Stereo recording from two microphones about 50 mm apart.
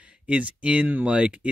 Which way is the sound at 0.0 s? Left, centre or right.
Right.